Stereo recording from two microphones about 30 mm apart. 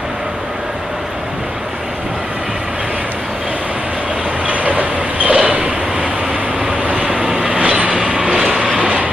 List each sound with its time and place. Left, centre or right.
4.5 s vehicle: right
5.5 s vehicle: right
7.3 s train: right
8.2 s vehicle: right
8.7 s train: right